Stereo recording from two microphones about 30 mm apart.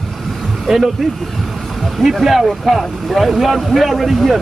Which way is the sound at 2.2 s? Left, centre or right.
Centre.